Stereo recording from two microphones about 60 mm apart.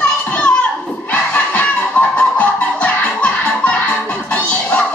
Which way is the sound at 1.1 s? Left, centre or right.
Left.